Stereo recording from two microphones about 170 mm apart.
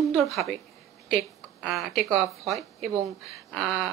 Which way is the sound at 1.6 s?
Centre (ahead or behind).